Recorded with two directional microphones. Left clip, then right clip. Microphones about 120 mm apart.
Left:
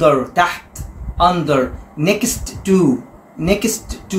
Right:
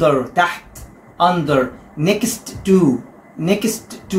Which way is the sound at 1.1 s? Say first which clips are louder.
Left 1 dB; 20° left (ahead or behind).